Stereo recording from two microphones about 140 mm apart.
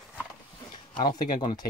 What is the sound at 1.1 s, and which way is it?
Speech, 35° left (ahead or behind).